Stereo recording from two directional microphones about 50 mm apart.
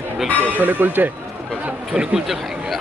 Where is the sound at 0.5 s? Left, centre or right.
Right.